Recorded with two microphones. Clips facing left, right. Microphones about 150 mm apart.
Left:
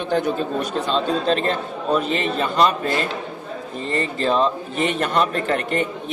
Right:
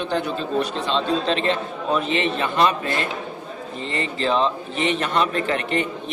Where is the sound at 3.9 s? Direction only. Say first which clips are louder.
Left 2 dB; 40° left (ahead or behind).